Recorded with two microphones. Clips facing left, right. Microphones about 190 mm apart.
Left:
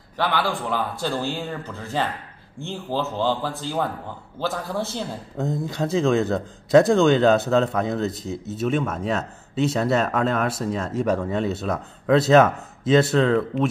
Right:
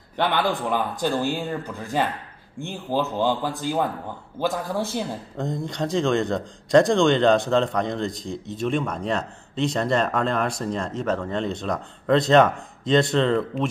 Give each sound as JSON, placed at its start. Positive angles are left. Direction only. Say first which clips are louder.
{"t": 0.2, "sound": "a man's voice", "louder": "right 1 dB", "side_deg": -20}
{"t": 5.4, "sound": "a man's voice", "louder": "left 2 dB", "side_deg": 5}